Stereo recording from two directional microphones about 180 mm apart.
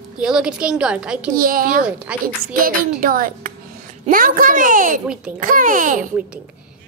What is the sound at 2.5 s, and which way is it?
A child's voice, 50° right (ahead or behind).